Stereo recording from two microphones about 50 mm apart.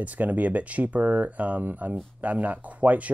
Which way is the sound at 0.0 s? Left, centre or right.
Right.